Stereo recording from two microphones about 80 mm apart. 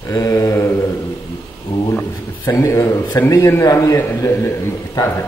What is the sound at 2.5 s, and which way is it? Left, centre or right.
A man's voice, left.